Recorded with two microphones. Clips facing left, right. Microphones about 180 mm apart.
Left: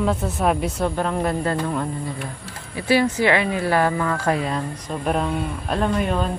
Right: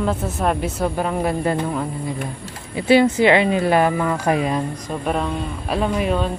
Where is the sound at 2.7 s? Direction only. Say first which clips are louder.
Right 5 dB; 20° right (ahead or behind).